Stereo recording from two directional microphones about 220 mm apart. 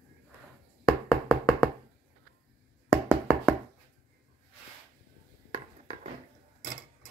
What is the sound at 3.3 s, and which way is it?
Knock, 5° left (ahead or behind).